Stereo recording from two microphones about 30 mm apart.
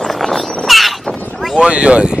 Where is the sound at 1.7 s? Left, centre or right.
Right.